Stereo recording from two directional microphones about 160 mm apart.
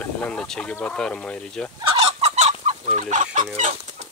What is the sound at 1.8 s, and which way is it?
Fowl, 35° right (ahead or behind).